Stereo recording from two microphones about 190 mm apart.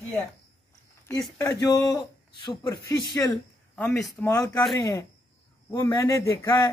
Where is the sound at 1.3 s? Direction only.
15° left (ahead or behind).